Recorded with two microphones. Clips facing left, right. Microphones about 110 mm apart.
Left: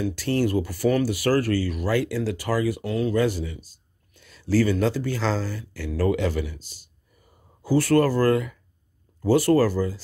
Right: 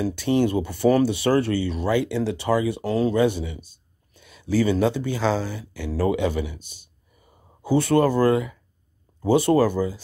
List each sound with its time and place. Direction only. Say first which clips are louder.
0.1 s speech: right 2 dB; 20° right (ahead or behind)
2.8 s speech: right 3 dB; 35° right (ahead or behind)
3.2 s speech: right 2 dB; 20° right (ahead or behind)